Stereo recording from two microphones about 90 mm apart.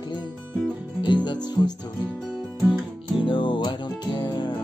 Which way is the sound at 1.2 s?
55° left (ahead or behind).